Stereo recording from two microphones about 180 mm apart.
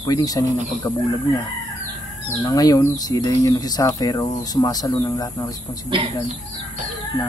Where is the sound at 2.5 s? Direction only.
20° left (ahead or behind).